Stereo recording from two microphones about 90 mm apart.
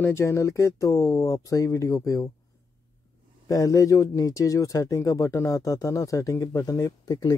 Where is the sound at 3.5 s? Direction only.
40° left (ahead or behind).